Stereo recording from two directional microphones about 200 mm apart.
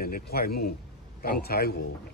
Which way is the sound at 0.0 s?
50° left (ahead or behind).